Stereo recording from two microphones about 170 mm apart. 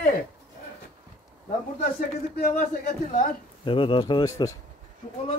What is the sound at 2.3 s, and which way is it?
Speech, 65° left (ahead or behind).